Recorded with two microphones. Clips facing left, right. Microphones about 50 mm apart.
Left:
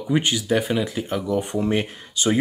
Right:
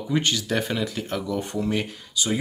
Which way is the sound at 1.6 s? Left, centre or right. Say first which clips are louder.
Left 3 dB; left.